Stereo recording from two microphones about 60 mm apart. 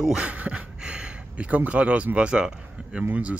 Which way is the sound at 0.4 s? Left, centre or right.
Centre.